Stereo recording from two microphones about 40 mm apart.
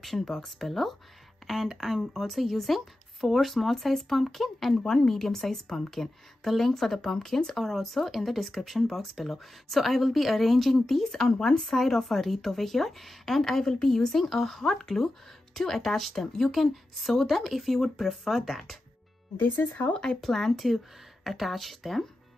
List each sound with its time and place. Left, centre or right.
0.0 s a woman's voice: centre
7.5 s speech: centre
19.3 s speech: left
20.2 s speech: centre